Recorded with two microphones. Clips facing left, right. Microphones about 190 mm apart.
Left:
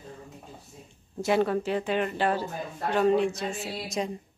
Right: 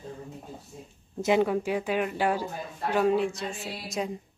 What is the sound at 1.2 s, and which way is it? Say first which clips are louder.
Speech: right 1 dB; 15° right (ahead or behind).